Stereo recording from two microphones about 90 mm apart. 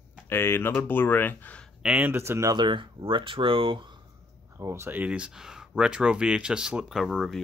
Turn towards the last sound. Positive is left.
turn(degrees=0)  # may be behind; listen again after turning